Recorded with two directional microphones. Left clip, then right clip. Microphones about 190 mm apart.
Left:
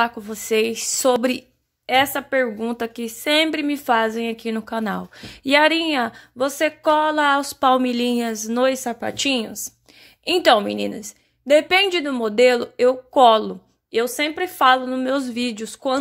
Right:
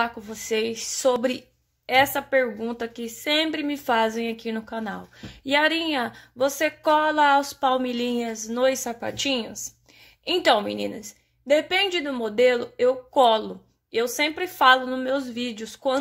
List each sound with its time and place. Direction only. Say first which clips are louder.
0.0 s a woman's voice: left 5 dB; 25° left (ahead or behind)
2.1 s a woman's voice: left 2 dB; 20° left (ahead or behind)